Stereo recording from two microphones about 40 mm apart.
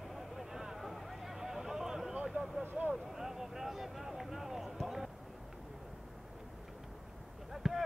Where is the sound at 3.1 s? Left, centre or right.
Centre.